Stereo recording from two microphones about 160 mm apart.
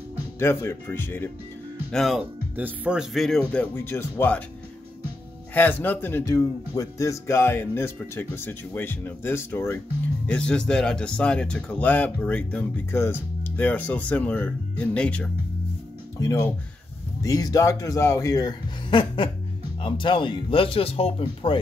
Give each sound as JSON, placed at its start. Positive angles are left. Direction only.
{"t": 0.4, "sound": "speech", "side_deg": 15}
{"t": 1.9, "sound": "speech", "side_deg": 0}
{"t": 3.7, "sound": "speech", "side_deg": 15}
{"t": 5.5, "sound": "speech", "side_deg": 10}
{"t": 16.2, "sound": "speech", "side_deg": 20}